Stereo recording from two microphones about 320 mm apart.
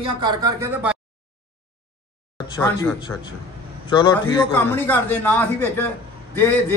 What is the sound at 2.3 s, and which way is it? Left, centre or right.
Speech, centre.